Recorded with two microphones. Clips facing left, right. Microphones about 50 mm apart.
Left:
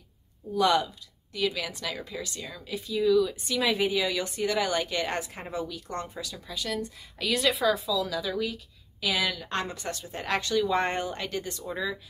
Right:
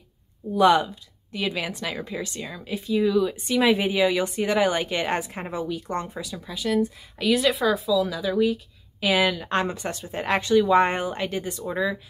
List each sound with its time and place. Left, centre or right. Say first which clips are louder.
0.6 s speech: right 6 dB; right
9.0 s speech: right 7 dB; right